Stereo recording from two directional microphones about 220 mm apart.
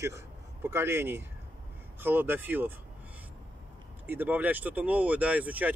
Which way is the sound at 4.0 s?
10° right (ahead or behind).